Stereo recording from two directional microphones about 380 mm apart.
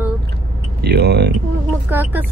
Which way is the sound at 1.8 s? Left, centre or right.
Centre.